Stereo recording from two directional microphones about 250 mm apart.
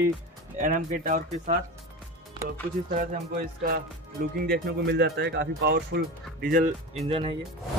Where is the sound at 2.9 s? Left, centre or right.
Right.